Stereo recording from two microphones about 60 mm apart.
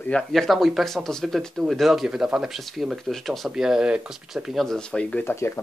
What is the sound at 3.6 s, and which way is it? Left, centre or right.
Speech, centre.